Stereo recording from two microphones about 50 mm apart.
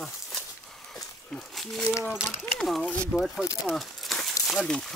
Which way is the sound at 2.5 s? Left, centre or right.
Centre.